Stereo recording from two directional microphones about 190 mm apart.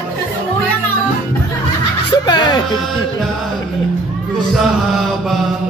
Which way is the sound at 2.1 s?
20° left (ahead or behind).